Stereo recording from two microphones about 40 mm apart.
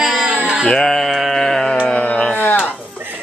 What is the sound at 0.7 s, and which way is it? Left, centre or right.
Female singing, centre.